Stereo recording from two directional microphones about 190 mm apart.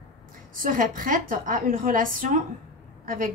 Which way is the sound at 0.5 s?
45° right (ahead or behind).